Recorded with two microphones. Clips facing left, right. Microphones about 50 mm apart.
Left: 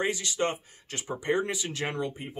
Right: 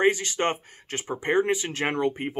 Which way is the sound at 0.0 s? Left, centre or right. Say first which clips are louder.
Right 6 dB; right.